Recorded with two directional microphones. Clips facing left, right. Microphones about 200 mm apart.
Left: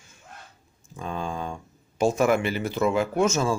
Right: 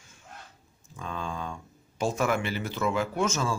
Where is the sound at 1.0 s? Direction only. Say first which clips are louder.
Left 4 dB; 15° left (ahead or behind).